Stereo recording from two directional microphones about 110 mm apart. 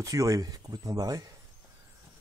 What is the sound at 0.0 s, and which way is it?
Speech, 30° right (ahead or behind).